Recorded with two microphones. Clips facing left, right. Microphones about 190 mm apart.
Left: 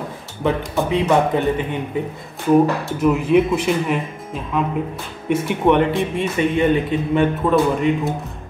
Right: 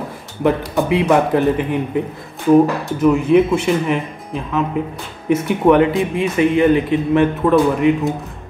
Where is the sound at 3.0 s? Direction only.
Centre (ahead or behind).